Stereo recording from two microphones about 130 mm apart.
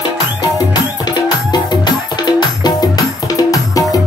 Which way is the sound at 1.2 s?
30° left (ahead or behind).